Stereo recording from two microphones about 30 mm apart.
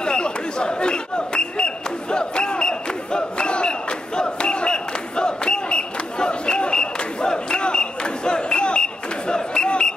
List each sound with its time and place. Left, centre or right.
0.0 s chatter: left